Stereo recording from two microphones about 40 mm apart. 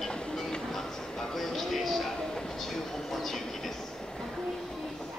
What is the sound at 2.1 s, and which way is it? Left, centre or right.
Train, centre.